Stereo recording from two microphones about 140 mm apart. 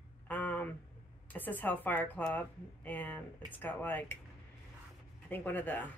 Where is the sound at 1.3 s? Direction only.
15° left (ahead or behind).